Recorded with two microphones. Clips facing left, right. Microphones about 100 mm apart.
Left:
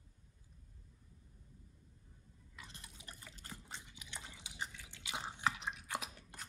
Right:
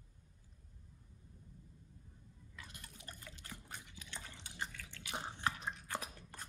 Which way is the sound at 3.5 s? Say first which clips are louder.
Left 1 dB; 20° left (ahead or behind).